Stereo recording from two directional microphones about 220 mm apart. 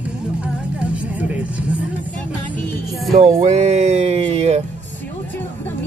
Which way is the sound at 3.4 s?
30° right (ahead or behind).